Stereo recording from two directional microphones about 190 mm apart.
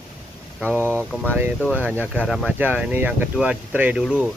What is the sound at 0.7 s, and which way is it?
Speech, 10° left (ahead or behind).